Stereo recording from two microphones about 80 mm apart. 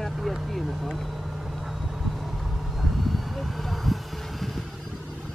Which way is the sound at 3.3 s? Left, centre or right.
Centre.